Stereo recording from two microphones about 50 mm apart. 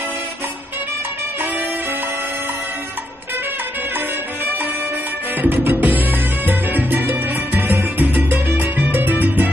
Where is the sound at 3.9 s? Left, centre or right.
Right.